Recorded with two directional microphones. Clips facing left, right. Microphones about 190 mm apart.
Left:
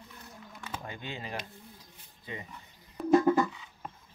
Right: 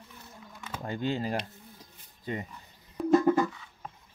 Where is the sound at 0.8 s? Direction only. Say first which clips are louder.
Right 14 dB; 40° right (ahead or behind).